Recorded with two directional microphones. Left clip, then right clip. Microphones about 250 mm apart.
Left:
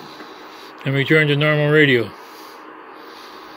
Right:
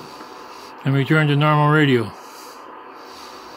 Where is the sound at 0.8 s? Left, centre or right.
Right.